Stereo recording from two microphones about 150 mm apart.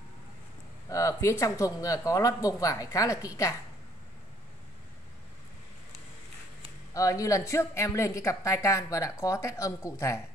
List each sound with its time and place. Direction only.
0.8 s speech: 20° left (ahead or behind)
6.9 s speech: 20° left (ahead or behind)